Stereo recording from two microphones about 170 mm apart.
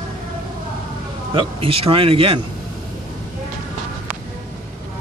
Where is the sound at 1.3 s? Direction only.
35° right (ahead or behind).